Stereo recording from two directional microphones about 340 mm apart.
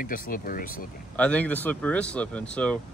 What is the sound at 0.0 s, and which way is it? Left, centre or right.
Speech, left.